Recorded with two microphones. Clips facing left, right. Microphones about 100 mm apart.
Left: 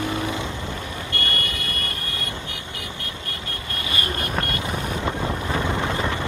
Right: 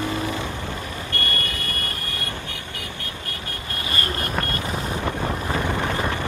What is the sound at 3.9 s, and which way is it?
Vehicle, 15° left (ahead or behind).